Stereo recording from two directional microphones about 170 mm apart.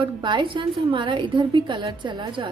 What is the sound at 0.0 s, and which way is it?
A woman's voice, 30° right (ahead or behind).